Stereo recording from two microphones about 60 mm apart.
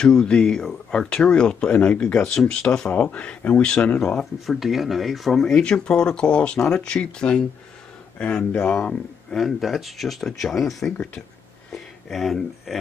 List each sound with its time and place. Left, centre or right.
0.0 s speech: centre
4.2 s speech: centre
8.5 s speech: left
9.3 s speech: centre